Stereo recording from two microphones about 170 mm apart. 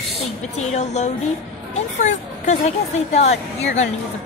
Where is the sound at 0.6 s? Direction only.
40° left (ahead or behind).